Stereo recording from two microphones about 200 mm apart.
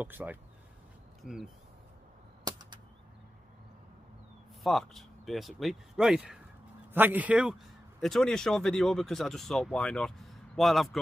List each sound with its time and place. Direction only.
0.0 s speech: 10° right (ahead or behind)
2.4 s a sound: 20° right (ahead or behind)
4.6 s speech: centre (ahead or behind)